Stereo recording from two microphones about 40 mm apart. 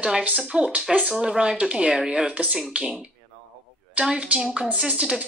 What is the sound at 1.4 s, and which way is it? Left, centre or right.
Speech, right.